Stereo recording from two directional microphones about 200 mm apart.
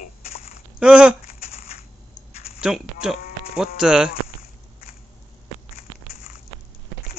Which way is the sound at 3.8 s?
5° right (ahead or behind).